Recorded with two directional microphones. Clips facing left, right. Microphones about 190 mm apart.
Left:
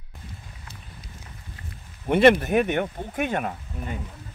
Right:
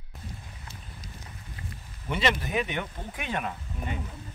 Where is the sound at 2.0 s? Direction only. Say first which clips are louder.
Left 11 dB; 55° left (ahead or behind).